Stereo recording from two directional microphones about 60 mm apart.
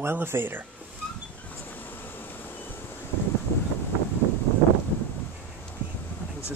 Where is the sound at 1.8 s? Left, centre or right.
Left.